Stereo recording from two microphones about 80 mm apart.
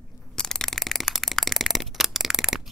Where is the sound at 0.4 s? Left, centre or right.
Centre.